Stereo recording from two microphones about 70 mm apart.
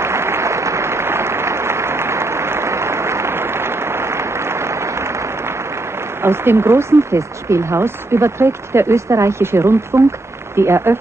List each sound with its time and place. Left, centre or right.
0.0 s applause: right
6.2 s speech: right